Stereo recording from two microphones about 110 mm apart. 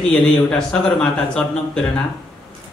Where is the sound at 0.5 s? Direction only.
5° left (ahead or behind).